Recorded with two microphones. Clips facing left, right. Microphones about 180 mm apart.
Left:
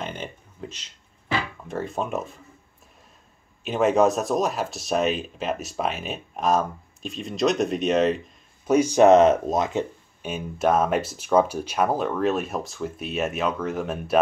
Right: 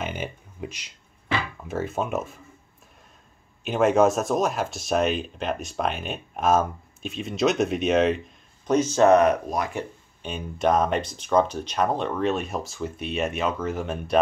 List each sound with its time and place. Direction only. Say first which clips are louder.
0.0 s a sound: right 2 dB; 10° right (ahead or behind)
1.7 s speech: right 1 dB; centre (ahead or behind)
3.6 s speech: even; centre (ahead or behind)
8.6 s speech: left 2 dB; 10° left (ahead or behind)
10.2 s speech: left 1 dB; 5° left (ahead or behind)